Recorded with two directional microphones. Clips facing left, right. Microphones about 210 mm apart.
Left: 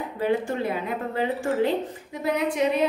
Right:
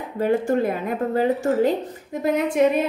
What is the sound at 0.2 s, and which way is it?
Speech, 45° right (ahead or behind).